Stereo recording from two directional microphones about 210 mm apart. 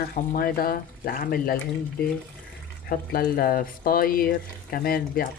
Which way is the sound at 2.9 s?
45° left (ahead or behind).